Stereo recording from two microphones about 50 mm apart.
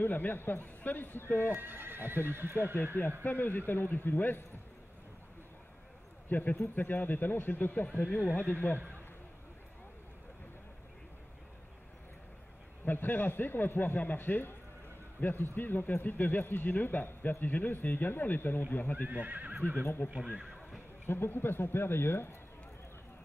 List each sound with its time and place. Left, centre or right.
0.0 s speech: left
1.6 s speech: right
3.3 s speech: left
6.2 s speech: left
12.8 s speech: left
19.0 s speech: right
20.2 s speech: centre
21.1 s speech: left